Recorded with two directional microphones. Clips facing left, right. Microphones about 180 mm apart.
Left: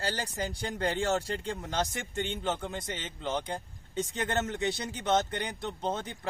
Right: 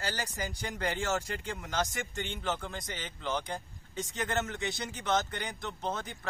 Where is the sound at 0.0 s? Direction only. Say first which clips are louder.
Left 3 dB; 30° left (ahead or behind).